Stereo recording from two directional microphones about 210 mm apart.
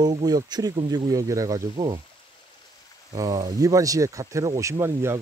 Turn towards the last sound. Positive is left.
turn(degrees=-10)  # may be behind; listen again after turning